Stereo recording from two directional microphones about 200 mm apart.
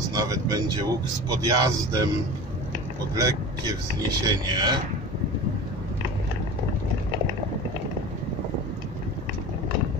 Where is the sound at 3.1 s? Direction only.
15° right (ahead or behind).